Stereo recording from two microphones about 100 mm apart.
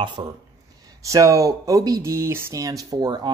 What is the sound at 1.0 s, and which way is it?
Speech, 35° right (ahead or behind).